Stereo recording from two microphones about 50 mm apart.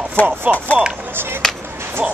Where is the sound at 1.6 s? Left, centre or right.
Right.